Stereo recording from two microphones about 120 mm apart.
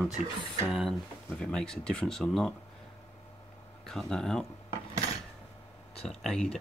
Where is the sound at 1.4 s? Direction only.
5° left (ahead or behind).